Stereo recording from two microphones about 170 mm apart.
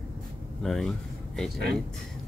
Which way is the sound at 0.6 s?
Centre (ahead or behind).